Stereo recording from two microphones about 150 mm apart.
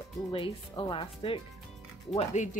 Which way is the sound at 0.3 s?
35° left (ahead or behind).